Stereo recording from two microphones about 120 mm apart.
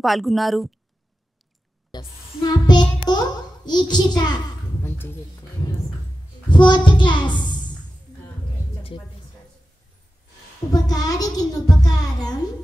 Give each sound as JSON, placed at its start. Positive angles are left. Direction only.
{"t": 0.0, "sound": "a woman's voice", "side_deg": 0}
{"t": 1.9, "sound": "a sound", "side_deg": 35}
{"t": 4.8, "sound": "speech", "side_deg": 15}
{"t": 6.5, "sound": "a child's voice", "side_deg": 40}
{"t": 10.7, "sound": "a child's voice", "side_deg": 30}